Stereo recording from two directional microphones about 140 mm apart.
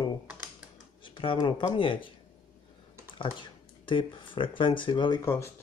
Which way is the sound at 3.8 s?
35° left (ahead or behind).